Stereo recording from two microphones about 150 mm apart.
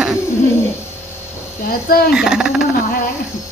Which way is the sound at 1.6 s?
80° left.